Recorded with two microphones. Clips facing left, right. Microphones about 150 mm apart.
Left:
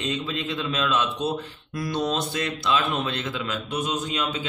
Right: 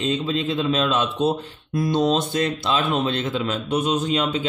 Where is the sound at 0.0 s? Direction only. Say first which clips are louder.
Right 6 dB; 30° right (ahead or behind).